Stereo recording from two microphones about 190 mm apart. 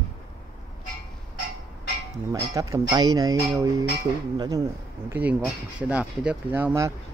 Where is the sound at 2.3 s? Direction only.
20° right (ahead or behind).